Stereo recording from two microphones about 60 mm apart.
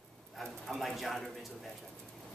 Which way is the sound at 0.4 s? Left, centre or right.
Centre.